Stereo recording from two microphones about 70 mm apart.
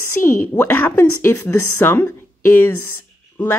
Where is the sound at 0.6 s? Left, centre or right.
Left.